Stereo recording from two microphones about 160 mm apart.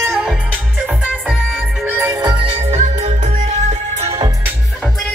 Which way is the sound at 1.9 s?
15° right (ahead or behind).